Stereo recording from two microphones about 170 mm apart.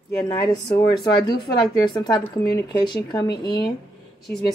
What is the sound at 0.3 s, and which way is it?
Speech, 20° left (ahead or behind).